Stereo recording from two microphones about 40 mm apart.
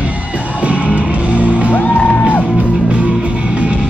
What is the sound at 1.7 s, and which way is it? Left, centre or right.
Music, left.